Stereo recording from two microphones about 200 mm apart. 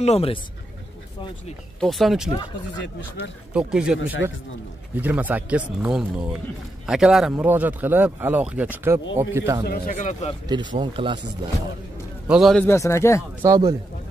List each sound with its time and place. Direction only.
0.0 s speech: 30° left (ahead or behind)
1.8 s speech: centre (ahead or behind)
3.5 s speech: 5° right (ahead or behind)
4.0 s speech: 75° left (ahead or behind)
4.9 s speech: 10° right (ahead or behind)
9.7 s speech: 50° left (ahead or behind)
10.5 s speech: 20° right (ahead or behind)
12.3 s speech: centre (ahead or behind)
12.6 s speech: 15° left (ahead or behind)
13.4 s speech: 15° right (ahead or behind)